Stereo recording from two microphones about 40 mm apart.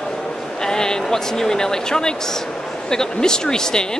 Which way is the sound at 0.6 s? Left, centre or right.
Centre.